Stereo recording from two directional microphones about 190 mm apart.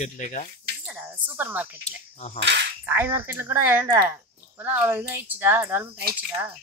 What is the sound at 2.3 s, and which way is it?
Speech, 65° right (ahead or behind).